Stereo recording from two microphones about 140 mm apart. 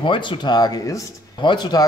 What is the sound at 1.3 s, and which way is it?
Speech, 35° left (ahead or behind).